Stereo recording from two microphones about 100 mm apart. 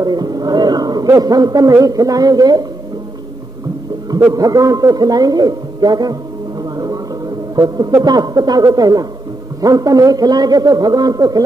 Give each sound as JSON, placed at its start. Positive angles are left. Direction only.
{"t": 0.0, "sound": "a man's voice", "side_deg": -40}
{"t": 4.3, "sound": "speech", "side_deg": -35}